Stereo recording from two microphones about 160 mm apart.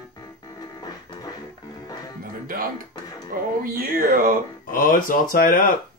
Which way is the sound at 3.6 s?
65° right (ahead or behind).